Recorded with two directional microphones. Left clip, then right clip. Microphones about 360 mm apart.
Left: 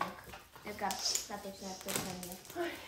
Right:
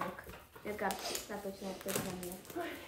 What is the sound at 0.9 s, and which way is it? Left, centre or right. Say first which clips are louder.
Speech: left 1 dB; centre.